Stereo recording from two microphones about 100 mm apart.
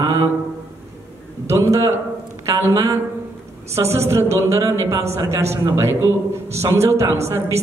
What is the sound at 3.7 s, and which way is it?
A woman's voice, 25° right (ahead or behind).